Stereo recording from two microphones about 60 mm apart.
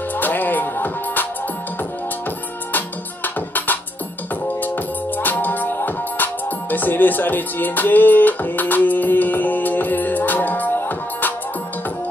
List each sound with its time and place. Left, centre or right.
0.2 s music: left
3.3 s music: left
5.2 s music: left